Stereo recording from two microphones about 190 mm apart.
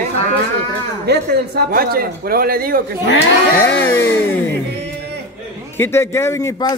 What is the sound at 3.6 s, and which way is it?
Speech, 10° left (ahead or behind).